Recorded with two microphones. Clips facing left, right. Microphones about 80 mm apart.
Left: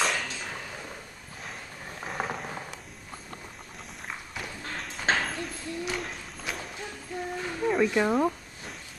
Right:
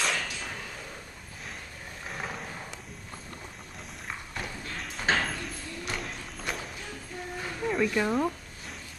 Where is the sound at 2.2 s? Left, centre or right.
Left.